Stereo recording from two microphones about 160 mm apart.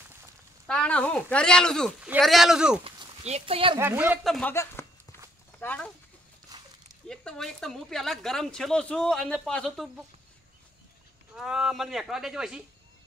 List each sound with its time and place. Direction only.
0.7 s speech: 5° left (ahead or behind)
2.8 s speech: 35° right (ahead or behind)
3.8 s speech: 10° right (ahead or behind)
4.2 s speech: centre (ahead or behind)
4.5 s speech: 15° left (ahead or behind)
6.5 s dog: 25° right (ahead or behind)
7.1 s speech: centre (ahead or behind)
11.3 s speech: 5° right (ahead or behind)